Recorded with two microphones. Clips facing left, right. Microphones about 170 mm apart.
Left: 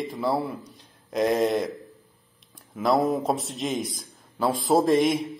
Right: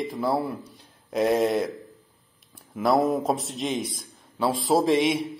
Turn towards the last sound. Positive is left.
turn(degrees=0)  # may be behind; listen again after turning